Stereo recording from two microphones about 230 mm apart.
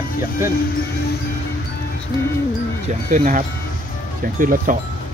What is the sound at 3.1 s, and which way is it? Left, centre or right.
Speech, right.